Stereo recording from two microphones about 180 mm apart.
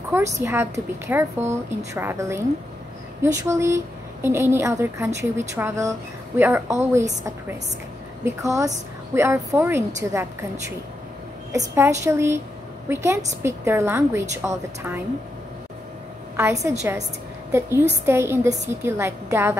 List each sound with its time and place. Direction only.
0.1 s a woman's voice: 15° right (ahead or behind)
3.4 s a woman's voice: 15° right (ahead or behind)
11.5 s a woman's voice: 15° right (ahead or behind)
16.3 s a woman's voice: 15° right (ahead or behind)